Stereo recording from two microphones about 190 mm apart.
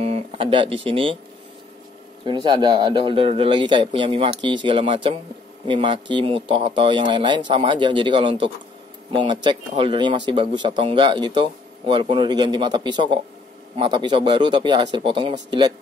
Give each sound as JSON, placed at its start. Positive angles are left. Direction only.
{"t": 0.0, "sound": "speech", "side_deg": -35}
{"t": 2.2, "sound": "speech", "side_deg": -25}